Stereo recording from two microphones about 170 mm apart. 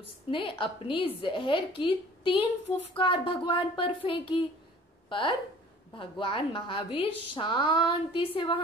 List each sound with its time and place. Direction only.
0.3 s a woman's voice: 30° left (ahead or behind)
5.9 s a woman's voice: 30° left (ahead or behind)